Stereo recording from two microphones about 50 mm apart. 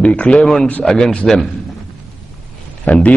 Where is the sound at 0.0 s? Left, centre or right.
Left.